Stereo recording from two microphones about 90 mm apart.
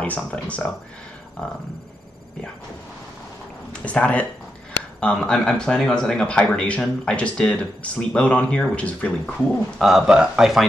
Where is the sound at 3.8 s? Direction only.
15° left (ahead or behind).